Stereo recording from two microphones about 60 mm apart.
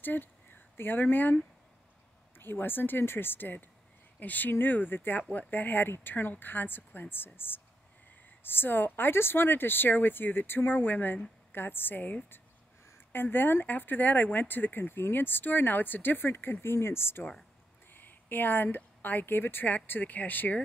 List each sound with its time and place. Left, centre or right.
0.0 s speech: left
12.9 s speech: left